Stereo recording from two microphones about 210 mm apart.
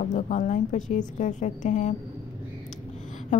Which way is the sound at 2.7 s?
35° left (ahead or behind).